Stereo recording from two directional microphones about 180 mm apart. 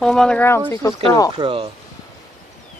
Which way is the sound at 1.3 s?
30° right (ahead or behind).